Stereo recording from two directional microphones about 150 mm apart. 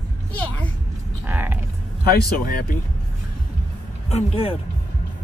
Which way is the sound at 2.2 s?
80° left.